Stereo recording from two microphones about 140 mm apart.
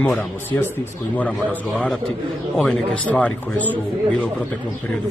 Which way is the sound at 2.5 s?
5° left (ahead or behind).